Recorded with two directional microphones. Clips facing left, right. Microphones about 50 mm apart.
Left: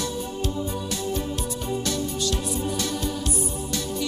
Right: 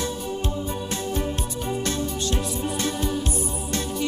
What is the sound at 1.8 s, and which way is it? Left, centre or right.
Music, right.